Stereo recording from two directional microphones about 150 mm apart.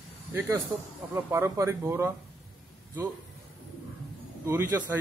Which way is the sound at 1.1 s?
20° right (ahead or behind).